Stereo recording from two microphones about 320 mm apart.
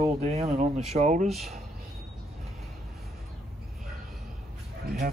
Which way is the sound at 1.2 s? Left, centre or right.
Centre.